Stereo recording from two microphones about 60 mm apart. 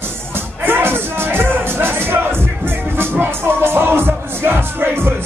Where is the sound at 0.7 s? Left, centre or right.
Right.